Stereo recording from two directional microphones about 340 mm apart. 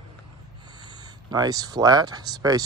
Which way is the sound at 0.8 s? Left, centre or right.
Centre.